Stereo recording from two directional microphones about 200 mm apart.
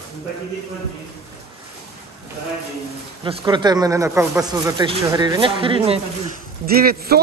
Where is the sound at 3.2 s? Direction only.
25° right (ahead or behind).